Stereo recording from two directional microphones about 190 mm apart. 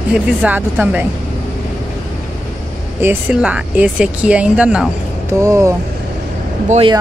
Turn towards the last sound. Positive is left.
turn(degrees=-30)  # may be behind; listen again after turning